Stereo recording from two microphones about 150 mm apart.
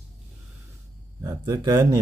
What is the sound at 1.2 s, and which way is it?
Speech, 25° right (ahead or behind).